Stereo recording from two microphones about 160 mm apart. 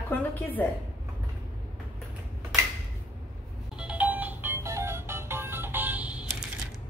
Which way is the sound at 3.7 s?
10° right (ahead or behind).